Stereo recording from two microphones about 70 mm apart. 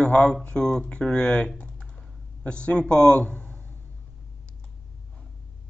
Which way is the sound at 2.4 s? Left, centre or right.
Centre.